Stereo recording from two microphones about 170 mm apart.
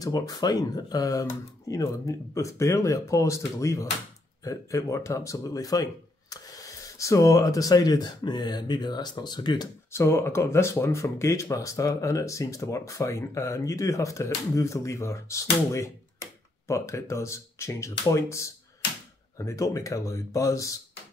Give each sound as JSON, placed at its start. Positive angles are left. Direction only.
{"t": 0.0, "sound": "speech", "side_deg": 20}